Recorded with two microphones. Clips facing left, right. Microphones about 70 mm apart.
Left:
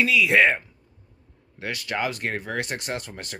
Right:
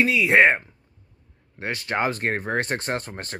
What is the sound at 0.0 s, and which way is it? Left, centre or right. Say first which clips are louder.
Speech: right 2 dB; right.